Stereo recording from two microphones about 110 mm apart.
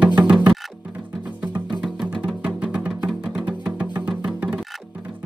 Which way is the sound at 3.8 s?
15° right (ahead or behind).